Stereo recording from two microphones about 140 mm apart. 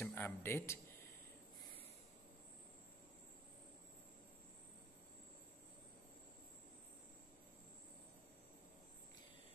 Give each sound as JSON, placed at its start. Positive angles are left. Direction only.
{"t": 0.0, "sound": "speech", "side_deg": 15}